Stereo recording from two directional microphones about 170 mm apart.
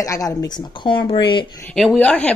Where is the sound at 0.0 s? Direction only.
20° left (ahead or behind).